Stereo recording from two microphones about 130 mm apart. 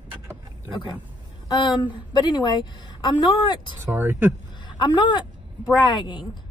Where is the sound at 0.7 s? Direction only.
35° left (ahead or behind).